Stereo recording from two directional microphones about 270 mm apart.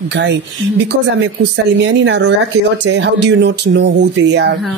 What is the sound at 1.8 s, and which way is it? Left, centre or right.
A woman's voice, right.